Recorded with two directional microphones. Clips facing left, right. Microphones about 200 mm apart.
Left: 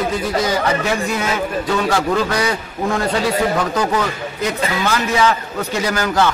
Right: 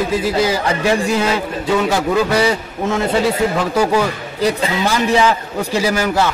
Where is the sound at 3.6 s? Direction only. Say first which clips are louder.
Right 3 dB; 10° right (ahead or behind).